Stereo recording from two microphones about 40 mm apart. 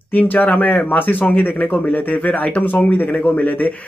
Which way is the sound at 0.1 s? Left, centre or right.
Left.